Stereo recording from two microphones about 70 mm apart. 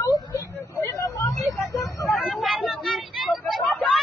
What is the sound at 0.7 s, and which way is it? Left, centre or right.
Vehicle, left.